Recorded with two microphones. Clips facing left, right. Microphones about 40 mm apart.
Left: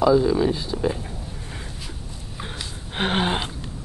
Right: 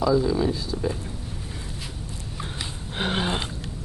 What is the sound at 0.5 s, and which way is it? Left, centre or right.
Speech, left.